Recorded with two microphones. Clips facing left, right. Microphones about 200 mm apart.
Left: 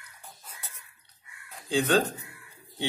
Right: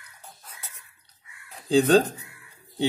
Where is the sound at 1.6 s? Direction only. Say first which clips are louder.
Right 6 dB; 35° right (ahead or behind).